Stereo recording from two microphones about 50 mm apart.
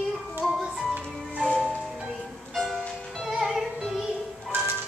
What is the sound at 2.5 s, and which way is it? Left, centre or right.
Music, centre.